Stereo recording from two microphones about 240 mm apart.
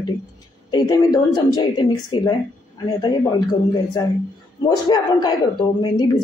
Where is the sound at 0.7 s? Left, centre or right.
Centre.